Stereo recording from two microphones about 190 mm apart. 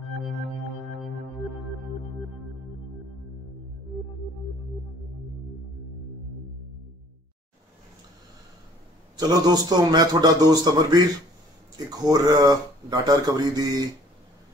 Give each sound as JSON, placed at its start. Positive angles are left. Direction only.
{"t": 9.1, "sound": "speech", "side_deg": -20}